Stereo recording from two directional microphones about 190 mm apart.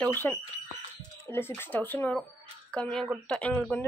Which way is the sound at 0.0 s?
10° left (ahead or behind).